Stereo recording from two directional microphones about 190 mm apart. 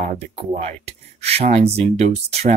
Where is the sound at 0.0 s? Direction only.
40° right (ahead or behind).